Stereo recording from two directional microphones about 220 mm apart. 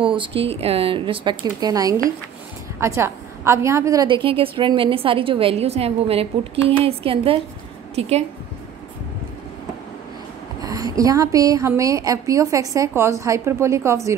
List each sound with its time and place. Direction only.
0.0 s a woman's voice: 25° right (ahead or behind)
10.6 s a woman's voice: 15° right (ahead or behind)